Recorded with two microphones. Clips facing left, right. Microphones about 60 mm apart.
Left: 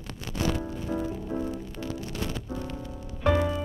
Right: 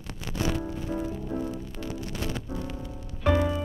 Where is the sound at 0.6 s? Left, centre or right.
Centre.